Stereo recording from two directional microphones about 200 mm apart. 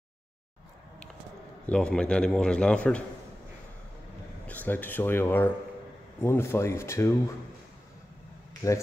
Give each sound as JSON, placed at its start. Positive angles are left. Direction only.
{"t": 1.7, "sound": "a man's voice", "side_deg": 5}
{"t": 4.5, "sound": "speech", "side_deg": 10}
{"t": 8.6, "sound": "speech", "side_deg": 15}